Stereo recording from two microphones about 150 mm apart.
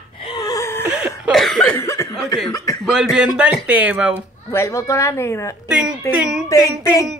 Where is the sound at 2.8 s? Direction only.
5° right (ahead or behind).